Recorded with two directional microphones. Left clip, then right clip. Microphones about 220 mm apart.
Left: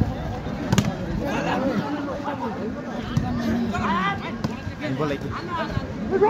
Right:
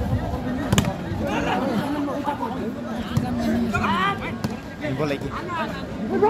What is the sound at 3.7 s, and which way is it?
Speech, 10° right (ahead or behind).